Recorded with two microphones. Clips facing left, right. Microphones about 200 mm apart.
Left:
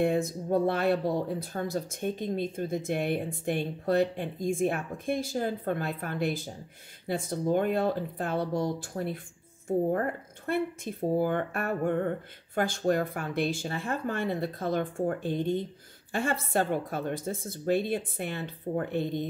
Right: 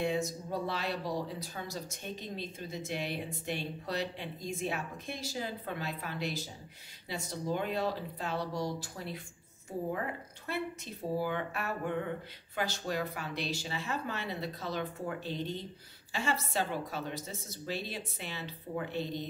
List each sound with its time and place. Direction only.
0.0 s speech: 55° left (ahead or behind)